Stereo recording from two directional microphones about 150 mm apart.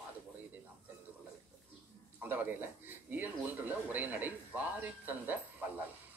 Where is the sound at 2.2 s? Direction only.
10° right (ahead or behind).